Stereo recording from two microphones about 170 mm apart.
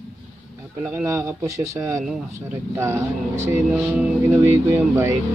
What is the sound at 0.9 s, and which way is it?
Speech, 15° right (ahead or behind).